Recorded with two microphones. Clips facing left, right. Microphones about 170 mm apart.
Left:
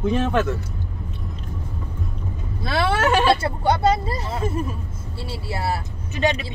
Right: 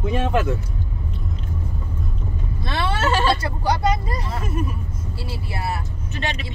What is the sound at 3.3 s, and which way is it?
Speech, 25° left (ahead or behind).